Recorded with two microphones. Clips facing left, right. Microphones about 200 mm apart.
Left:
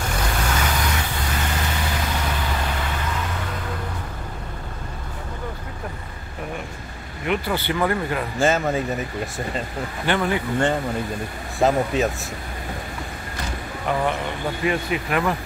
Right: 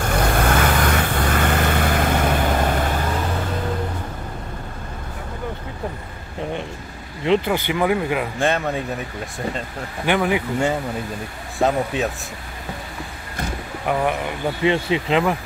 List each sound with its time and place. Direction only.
0.2 s vehicle: 55° right (ahead or behind)
7.2 s speech: 20° right (ahead or behind)
8.4 s speech: centre (ahead or behind)
10.0 s speech: 15° right (ahead or behind)
11.5 s speech: centre (ahead or behind)
14.6 s speech: 25° right (ahead or behind)